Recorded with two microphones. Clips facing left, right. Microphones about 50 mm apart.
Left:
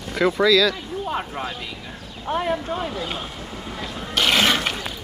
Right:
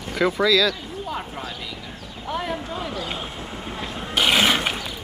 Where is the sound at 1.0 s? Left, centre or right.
Left.